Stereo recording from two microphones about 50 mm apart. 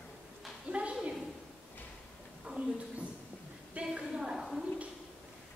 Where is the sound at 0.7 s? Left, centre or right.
Right.